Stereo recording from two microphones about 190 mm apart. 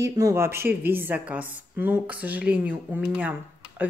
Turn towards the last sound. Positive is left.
turn(degrees=-10)  # may be behind; listen again after turning